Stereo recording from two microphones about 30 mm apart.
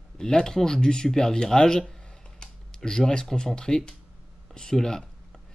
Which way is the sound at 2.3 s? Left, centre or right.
Left.